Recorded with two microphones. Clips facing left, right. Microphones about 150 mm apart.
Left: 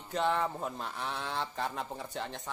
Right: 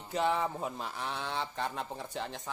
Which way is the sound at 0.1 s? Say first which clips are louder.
Even; centre (ahead or behind).